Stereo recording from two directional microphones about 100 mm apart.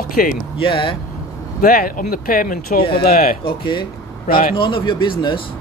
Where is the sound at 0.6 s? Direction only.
60° left (ahead or behind).